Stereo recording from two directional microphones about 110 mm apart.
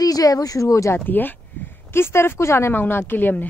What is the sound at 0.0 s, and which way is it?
Speech, 35° left (ahead or behind).